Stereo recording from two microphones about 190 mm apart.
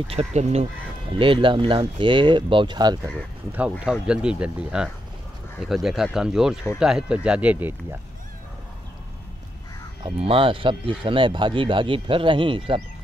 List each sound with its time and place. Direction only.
0.1 s speech: 35° right (ahead or behind)
3.8 s speech: 5° right (ahead or behind)
10.0 s speech: 30° right (ahead or behind)